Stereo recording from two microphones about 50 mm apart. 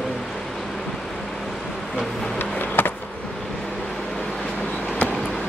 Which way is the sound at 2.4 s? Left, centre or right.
Left.